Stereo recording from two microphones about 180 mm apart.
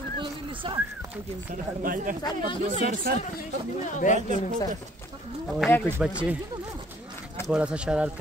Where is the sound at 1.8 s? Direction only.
50° right (ahead or behind).